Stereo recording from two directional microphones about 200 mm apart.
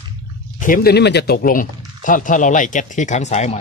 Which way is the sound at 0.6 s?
45° left (ahead or behind).